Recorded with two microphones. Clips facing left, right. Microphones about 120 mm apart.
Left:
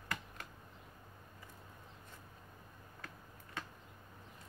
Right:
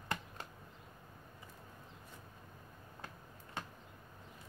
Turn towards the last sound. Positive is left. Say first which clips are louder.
# right 1 dB
turn(degrees=-25)  # may be behind; listen again after turning